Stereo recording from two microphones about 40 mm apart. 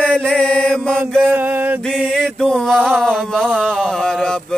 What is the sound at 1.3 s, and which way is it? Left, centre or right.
Mantra, right.